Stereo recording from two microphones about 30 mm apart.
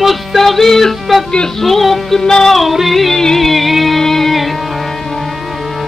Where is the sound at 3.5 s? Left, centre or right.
Centre.